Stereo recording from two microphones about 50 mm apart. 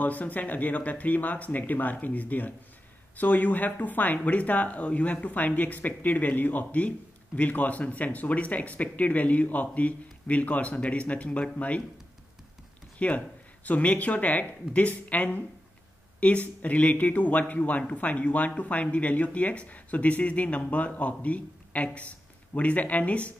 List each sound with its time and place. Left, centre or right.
0.0 s speech: left
13.0 s speech: left